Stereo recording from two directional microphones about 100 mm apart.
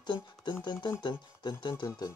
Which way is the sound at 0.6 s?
45° left (ahead or behind).